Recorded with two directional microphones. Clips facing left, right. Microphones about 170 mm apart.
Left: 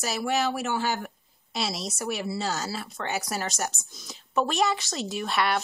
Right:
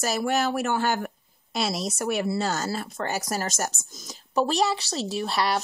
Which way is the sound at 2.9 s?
40° right (ahead or behind).